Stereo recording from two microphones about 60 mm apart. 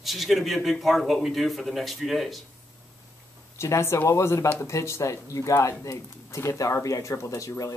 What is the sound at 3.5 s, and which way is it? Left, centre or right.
Speech, left.